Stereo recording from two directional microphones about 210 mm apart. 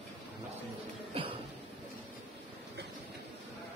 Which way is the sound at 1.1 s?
25° right (ahead or behind).